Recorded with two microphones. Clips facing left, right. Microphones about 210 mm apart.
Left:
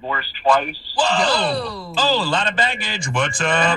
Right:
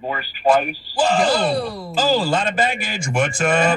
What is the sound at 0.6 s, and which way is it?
Speech, 45° right (ahead or behind).